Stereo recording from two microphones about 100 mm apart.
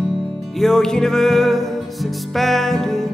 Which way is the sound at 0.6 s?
5° left (ahead or behind).